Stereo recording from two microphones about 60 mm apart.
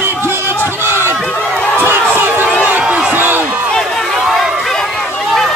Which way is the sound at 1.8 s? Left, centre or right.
Right.